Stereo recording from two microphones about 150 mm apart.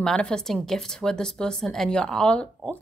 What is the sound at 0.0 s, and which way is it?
A woman's voice, 5° left (ahead or behind).